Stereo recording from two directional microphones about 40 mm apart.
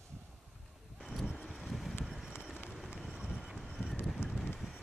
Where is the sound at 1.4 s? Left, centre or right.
Centre.